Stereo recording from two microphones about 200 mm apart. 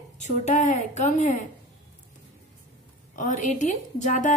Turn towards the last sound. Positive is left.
turn(degrees=40)  # may be behind; listen again after turning